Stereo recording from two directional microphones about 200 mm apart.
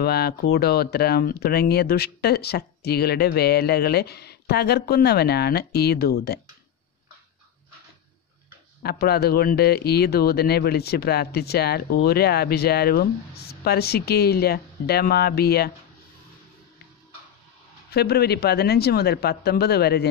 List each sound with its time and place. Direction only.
0.0 s speech: 50° left (ahead or behind)
8.8 s speech: 50° left (ahead or behind)
17.9 s speech: 55° left (ahead or behind)